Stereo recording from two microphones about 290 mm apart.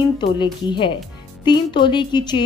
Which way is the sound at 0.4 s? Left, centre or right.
Centre.